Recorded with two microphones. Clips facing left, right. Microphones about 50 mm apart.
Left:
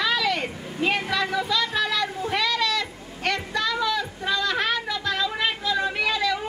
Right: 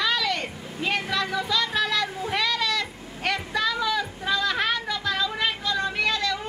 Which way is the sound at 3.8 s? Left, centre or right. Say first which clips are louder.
Left 1 dB; centre.